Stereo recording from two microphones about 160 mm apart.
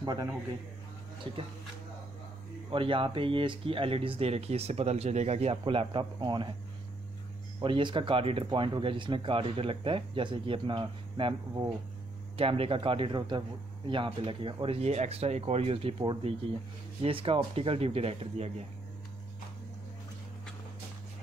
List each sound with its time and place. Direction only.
0.0 s a man's voice: 25° right (ahead or behind)
2.7 s speech: 35° right (ahead or behind)
7.6 s speech: 30° right (ahead or behind)